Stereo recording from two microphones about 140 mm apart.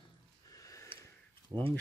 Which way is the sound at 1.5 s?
25° right (ahead or behind).